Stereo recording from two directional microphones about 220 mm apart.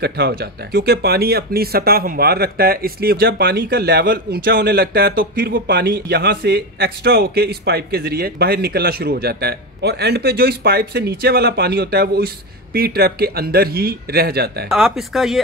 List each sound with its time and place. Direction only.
0.0 s speech: 45° right (ahead or behind)
14.7 s speech: centre (ahead or behind)